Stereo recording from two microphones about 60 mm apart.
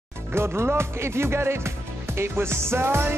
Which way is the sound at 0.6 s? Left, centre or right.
Right.